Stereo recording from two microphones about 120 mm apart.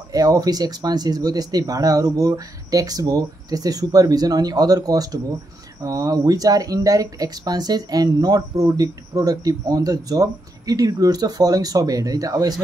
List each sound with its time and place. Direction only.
0.1 s speech: 30° right (ahead or behind)